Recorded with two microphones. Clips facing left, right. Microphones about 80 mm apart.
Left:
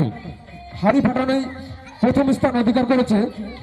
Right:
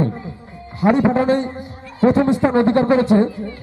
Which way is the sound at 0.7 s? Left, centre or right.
Right.